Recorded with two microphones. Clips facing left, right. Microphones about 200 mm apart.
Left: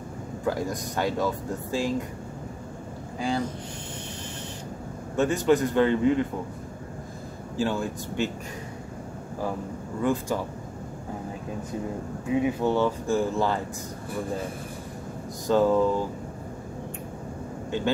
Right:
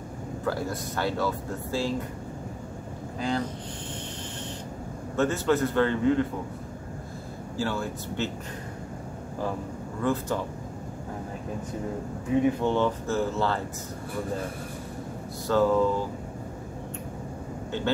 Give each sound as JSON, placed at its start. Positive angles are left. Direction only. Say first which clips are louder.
{"t": 0.5, "sound": "speech", "louder": "left 2 dB", "side_deg": 15}
{"t": 3.2, "sound": "speech", "louder": "left 1 dB", "side_deg": 10}
{"t": 5.1, "sound": "speech", "louder": "left 2 dB", "side_deg": 15}
{"t": 7.5, "sound": "speech", "louder": "left 3 dB", "side_deg": 15}
{"t": 10.0, "sound": "speech", "louder": "left 1 dB", "side_deg": 10}
{"t": 12.6, "sound": "speech", "louder": "left 1 dB", "side_deg": 10}
{"t": 15.4, "sound": "speech", "louder": "left 1 dB", "side_deg": 15}
{"t": 17.6, "sound": "speech", "louder": "left 2 dB", "side_deg": 15}